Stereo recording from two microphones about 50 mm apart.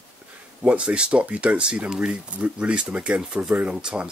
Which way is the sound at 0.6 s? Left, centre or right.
Right.